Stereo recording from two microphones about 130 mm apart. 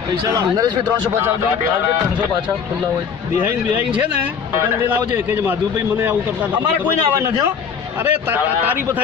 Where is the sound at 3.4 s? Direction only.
10° right (ahead or behind).